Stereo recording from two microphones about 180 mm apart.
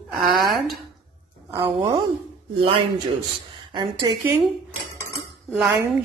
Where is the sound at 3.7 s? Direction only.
25° right (ahead or behind).